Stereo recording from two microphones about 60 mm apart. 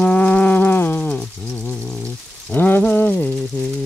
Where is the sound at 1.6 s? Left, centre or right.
Left.